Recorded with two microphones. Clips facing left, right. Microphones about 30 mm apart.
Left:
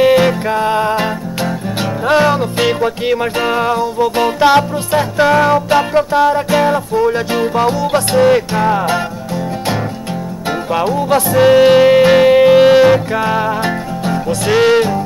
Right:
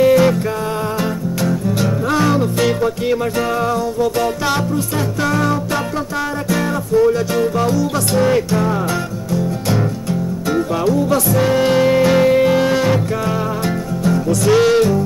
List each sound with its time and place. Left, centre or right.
0.0 s music: left
1.4 s music: left
11.3 s music: left